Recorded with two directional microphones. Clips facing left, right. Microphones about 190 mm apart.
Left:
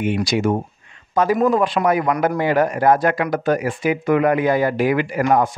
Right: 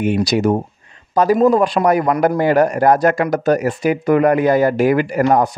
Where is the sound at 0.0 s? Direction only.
40° right (ahead or behind).